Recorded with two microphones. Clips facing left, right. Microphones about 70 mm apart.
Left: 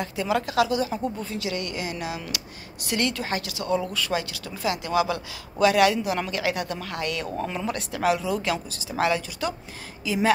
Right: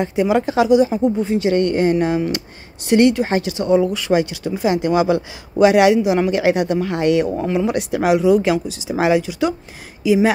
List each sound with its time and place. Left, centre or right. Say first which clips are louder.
0.0 s speech: right 9 dB; right
1.5 s speech: right 15 dB; right
2.9 s speech: right 12 dB; right